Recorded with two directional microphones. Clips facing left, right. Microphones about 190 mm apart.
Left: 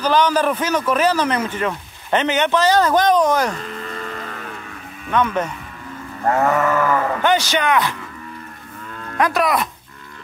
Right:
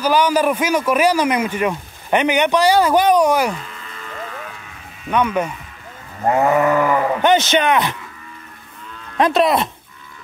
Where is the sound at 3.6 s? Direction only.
50° left (ahead or behind).